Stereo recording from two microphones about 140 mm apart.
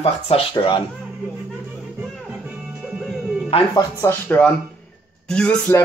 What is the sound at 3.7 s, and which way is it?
Speech, 20° left (ahead or behind).